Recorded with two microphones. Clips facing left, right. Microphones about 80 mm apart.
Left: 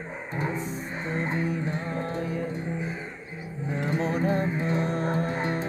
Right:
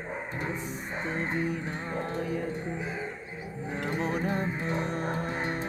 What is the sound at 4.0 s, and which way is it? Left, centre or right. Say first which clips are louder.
Music: left 4 dB; centre.